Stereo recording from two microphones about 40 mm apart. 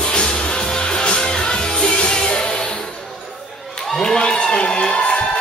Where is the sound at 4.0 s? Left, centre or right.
Centre.